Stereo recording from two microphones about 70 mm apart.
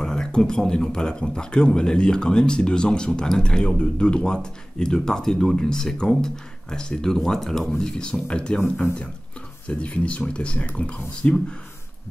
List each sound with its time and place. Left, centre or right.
0.0 s speech: centre
9.7 s speech: centre